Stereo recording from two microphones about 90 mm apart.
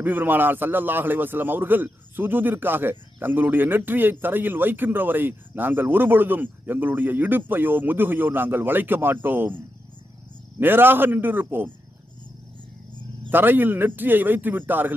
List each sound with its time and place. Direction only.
0.0 s a man's voice: 20° right (ahead or behind)
10.6 s a man's voice: 25° right (ahead or behind)
13.3 s a man's voice: 20° right (ahead or behind)